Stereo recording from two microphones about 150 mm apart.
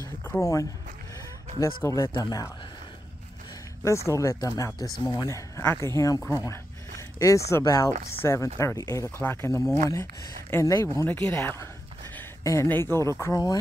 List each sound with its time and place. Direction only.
0.0 s a sound: 15° left (ahead or behind)
1.8 s speech: 15° left (ahead or behind)
3.8 s speech: 20° left (ahead or behind)